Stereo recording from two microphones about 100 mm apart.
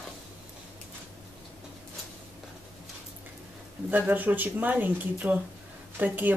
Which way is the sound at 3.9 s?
15° right (ahead or behind).